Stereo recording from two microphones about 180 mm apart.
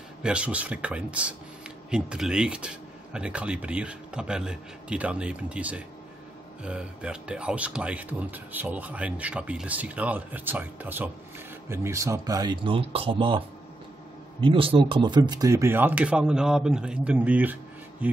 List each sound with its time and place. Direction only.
0.2 s speech: 5° right (ahead or behind); by 13.4 s 30° right (ahead or behind)
14.4 s speech: 30° right (ahead or behind); by 18.2 s 10° right (ahead or behind)